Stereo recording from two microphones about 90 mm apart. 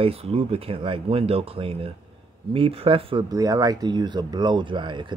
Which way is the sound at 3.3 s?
40° right (ahead or behind).